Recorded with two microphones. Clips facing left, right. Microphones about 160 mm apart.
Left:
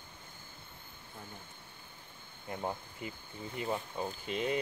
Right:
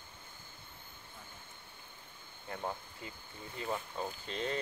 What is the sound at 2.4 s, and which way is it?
Speech, 15° left (ahead or behind).